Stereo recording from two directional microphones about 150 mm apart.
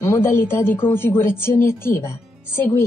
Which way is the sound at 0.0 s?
15° left (ahead or behind).